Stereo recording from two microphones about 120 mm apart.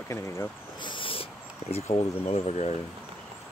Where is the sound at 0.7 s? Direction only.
45° left (ahead or behind); by 2.8 s 65° left (ahead or behind).